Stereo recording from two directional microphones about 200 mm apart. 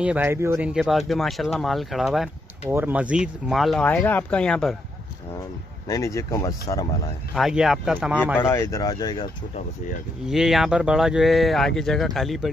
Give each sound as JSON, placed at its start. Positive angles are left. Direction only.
{"t": 0.0, "sound": "speech", "side_deg": -10}
{"t": 5.9, "sound": "speech", "side_deg": 15}
{"t": 7.3, "sound": "speech", "side_deg": 0}
{"t": 8.4, "sound": "speech", "side_deg": 15}
{"t": 10.2, "sound": "speech", "side_deg": 0}